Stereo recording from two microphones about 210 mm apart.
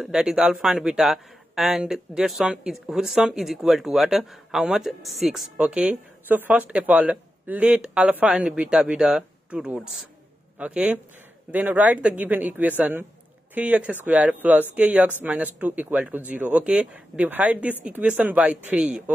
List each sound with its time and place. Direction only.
0.0 s speech: 5° right (ahead or behind)